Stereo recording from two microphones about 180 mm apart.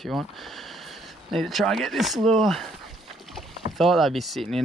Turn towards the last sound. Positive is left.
turn(degrees=0)  # may be behind; listen again after turning